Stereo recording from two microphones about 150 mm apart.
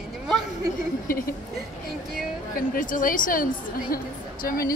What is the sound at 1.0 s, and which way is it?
Speech, 75° left (ahead or behind).